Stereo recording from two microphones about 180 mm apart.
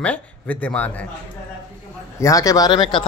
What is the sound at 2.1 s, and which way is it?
Speech, 20° left (ahead or behind).